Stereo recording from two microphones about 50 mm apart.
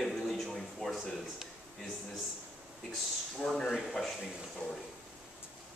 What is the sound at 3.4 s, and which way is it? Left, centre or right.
Speech, centre.